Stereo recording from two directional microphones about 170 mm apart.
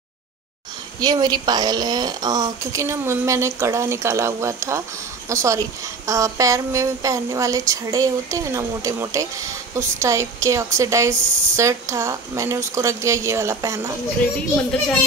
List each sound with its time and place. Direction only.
1.0 s a woman's voice: 25° right (ahead or behind)